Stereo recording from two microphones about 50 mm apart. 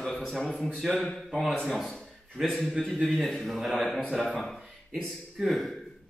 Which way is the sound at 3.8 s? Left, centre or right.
Centre.